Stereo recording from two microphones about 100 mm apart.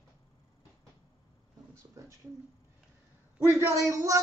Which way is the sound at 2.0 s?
30° right (ahead or behind).